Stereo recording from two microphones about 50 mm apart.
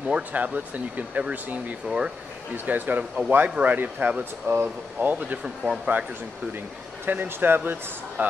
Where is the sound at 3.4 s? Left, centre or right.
Right.